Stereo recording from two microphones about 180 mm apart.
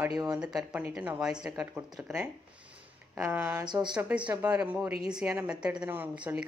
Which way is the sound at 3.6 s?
25° right (ahead or behind).